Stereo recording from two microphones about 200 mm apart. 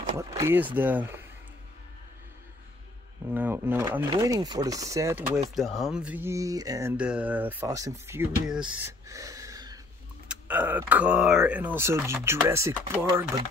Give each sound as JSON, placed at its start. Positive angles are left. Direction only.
{"t": 0.2, "sound": "speech", "side_deg": -15}
{"t": 3.3, "sound": "speech", "side_deg": -10}
{"t": 5.5, "sound": "speech", "side_deg": 0}
{"t": 10.2, "sound": "speech", "side_deg": -5}